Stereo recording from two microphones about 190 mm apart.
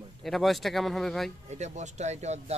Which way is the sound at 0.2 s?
Centre (ahead or behind).